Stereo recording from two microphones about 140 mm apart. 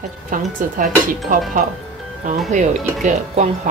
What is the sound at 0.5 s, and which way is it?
Speech, 75° right (ahead or behind).